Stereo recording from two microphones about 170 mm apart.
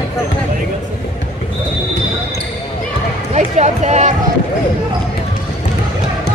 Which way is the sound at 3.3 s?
45° right (ahead or behind).